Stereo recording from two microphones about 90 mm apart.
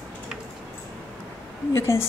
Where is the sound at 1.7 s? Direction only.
30° left (ahead or behind).